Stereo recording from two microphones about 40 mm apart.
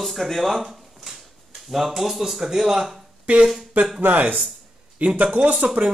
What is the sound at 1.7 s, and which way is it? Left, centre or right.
Speech, centre.